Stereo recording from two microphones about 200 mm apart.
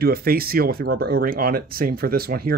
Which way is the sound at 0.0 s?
50° right (ahead or behind).